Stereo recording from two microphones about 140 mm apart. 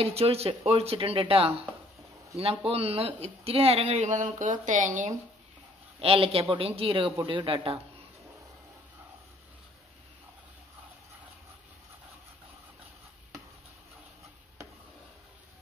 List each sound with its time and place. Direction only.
0.0 s speech: 45° right (ahead or behind); by 5.1 s 65° right (ahead or behind)
5.9 s speech: 45° right (ahead or behind)